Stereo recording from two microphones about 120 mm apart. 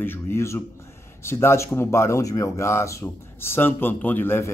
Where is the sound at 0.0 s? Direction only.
20° left (ahead or behind).